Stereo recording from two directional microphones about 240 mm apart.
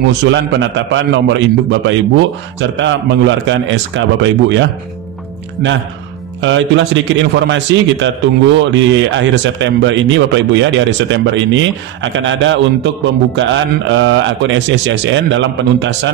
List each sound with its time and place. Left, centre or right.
0.2 s speech: right
6.4 s speech: right